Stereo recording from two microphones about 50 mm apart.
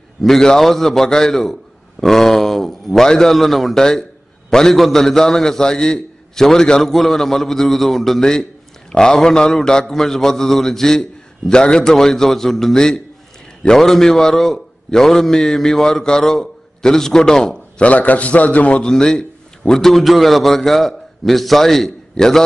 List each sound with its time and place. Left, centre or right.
0.2 s a man's voice: centre
17.8 s a man's voice: left
18.9 s a man's voice: centre